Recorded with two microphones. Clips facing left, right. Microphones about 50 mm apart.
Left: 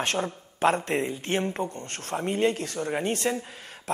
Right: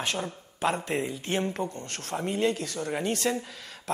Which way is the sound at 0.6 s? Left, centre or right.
Left.